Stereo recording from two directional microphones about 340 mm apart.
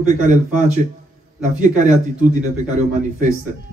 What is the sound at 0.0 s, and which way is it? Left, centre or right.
A man's voice, right.